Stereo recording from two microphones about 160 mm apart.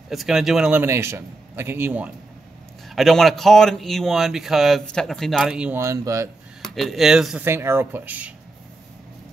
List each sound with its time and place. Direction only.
0.1 s a man's voice: centre (ahead or behind)
2.9 s speech: centre (ahead or behind)
5.8 s speech: 20° right (ahead or behind)
6.6 s speech: centre (ahead or behind)
7.4 s a man's voice: 15° right (ahead or behind)